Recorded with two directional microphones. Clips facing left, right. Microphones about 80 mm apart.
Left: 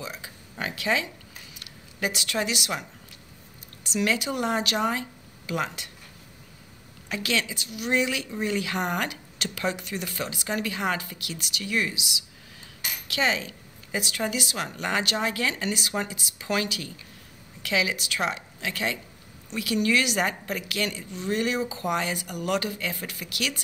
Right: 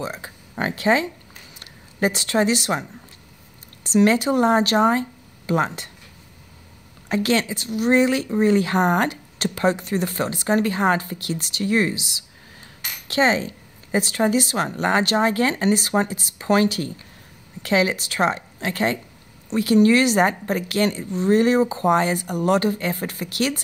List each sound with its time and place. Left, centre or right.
0.0 s a sound: right
1.6 s speech: right
7.1 s speech: right